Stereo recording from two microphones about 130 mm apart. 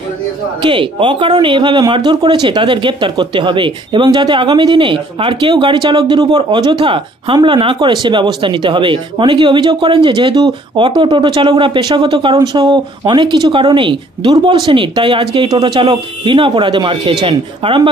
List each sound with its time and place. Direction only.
0.6 s speech: 40° right (ahead or behind)